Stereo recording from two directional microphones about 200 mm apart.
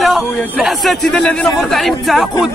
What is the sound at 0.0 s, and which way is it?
A man's voice, centre (ahead or behind).